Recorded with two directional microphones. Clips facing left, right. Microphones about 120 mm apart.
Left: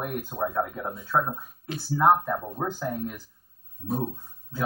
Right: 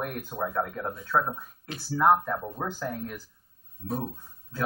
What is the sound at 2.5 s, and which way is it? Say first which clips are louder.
Speech: left 3 dB; 20° left (ahead or behind).